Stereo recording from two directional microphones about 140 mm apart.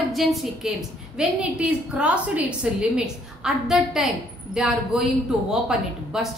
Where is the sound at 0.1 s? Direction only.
Centre (ahead or behind).